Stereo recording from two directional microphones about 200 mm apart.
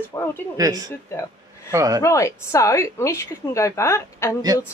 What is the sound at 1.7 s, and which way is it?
Speech, 15° right (ahead or behind).